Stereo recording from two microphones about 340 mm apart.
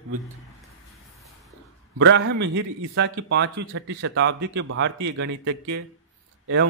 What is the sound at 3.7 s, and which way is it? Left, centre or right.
A man's voice, right.